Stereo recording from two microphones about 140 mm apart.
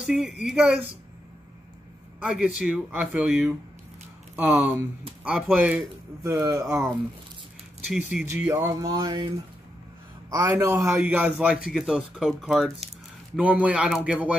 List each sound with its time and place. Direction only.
0.0 s speech: 5° right (ahead or behind)
2.1 s speech: 5° right (ahead or behind)
5.2 s speech: 10° right (ahead or behind)
7.9 s speech: 5° right (ahead or behind)
8.9 s speech: 30° right (ahead or behind)
10.3 s a man's voice: 25° right (ahead or behind)